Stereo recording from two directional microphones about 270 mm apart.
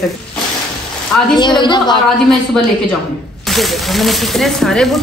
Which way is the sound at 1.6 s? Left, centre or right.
Centre.